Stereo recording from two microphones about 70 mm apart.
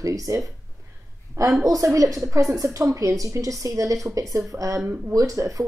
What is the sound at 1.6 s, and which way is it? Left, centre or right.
Speech, right.